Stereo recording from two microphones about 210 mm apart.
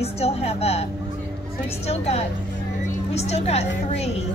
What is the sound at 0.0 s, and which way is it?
Speech, 30° left (ahead or behind).